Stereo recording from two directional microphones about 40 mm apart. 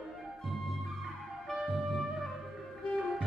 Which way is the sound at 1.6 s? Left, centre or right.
Centre.